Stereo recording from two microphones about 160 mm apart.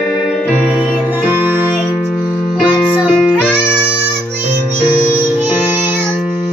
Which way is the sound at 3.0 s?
5° right (ahead or behind).